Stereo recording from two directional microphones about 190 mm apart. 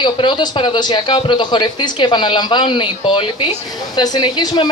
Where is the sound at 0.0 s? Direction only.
25° left (ahead or behind).